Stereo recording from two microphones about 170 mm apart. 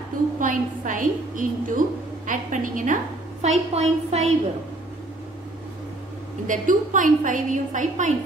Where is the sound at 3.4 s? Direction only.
40° right (ahead or behind).